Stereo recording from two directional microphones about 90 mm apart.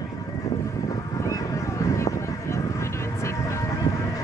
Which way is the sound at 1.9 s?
35° left (ahead or behind).